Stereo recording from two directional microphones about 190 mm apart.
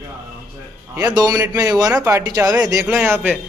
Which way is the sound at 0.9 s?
20° right (ahead or behind).